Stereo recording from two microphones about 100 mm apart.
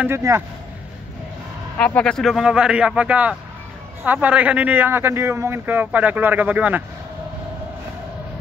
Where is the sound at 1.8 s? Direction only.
10° left (ahead or behind); by 6.8 s 15° right (ahead or behind).